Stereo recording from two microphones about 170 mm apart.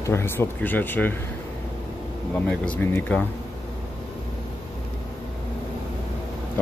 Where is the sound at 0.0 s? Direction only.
15° left (ahead or behind).